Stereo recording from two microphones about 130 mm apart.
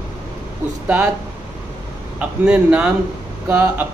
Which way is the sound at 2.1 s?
10° right (ahead or behind).